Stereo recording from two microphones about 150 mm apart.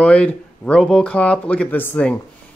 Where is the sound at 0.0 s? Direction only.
10° left (ahead or behind).